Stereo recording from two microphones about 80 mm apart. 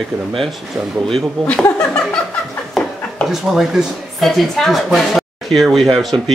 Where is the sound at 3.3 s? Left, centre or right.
Centre.